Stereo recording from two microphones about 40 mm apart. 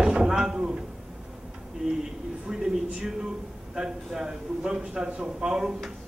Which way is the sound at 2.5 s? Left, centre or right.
Centre.